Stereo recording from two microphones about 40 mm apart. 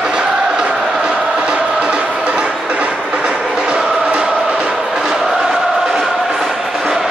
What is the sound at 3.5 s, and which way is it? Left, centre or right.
Chant, centre.